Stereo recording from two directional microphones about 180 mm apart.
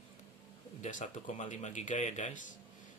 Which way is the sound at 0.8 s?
45° left (ahead or behind).